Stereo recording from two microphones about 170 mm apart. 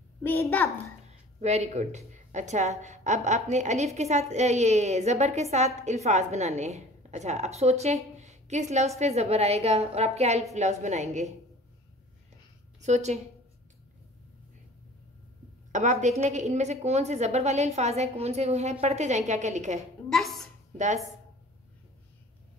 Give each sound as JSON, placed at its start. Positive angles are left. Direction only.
{"t": 0.2, "sound": "a child's voice", "side_deg": 10}
{"t": 1.4, "sound": "a woman's voice", "side_deg": -40}
{"t": 12.8, "sound": "a woman's voice", "side_deg": -40}
{"t": 15.7, "sound": "a woman's voice", "side_deg": -45}
{"t": 20.1, "sound": "a sound", "side_deg": 0}
{"t": 20.7, "sound": "speech", "side_deg": -45}